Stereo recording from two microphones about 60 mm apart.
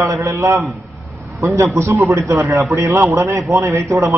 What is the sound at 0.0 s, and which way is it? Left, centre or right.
A man's voice, right.